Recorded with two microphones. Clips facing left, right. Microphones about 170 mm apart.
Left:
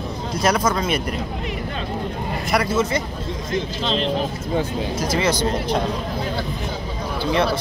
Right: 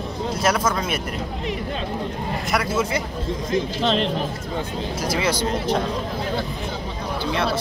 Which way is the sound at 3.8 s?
60° right (ahead or behind).